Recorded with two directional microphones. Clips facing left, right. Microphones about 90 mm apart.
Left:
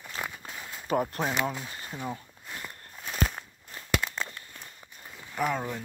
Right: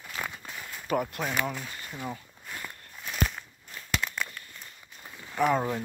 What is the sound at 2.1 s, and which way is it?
Walk, 25° left (ahead or behind).